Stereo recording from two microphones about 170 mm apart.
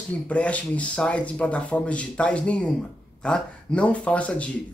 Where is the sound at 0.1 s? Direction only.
10° left (ahead or behind).